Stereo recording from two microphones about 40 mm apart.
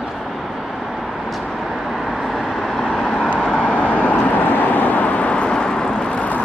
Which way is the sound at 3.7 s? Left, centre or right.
Left.